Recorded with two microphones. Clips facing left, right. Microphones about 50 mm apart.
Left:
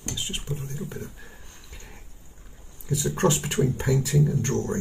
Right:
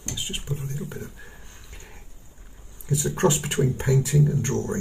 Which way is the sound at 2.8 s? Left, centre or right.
Centre.